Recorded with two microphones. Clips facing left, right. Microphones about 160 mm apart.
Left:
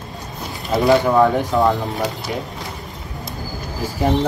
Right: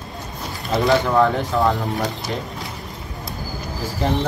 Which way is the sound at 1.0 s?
15° left (ahead or behind).